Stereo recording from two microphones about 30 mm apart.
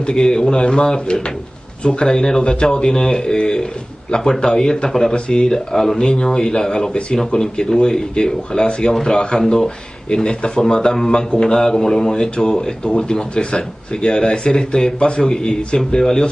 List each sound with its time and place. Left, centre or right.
0.0 s speech: left
2.4 s speech: left
2.9 s speech: centre
10.0 s speech: left
12.4 s speech: left